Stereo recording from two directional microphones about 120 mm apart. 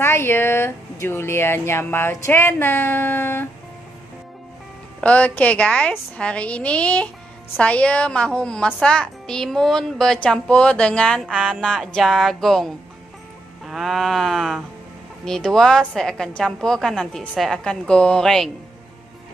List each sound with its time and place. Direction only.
0.0 s speech: 20° left (ahead or behind)
5.0 s a woman's voice: 10° left (ahead or behind)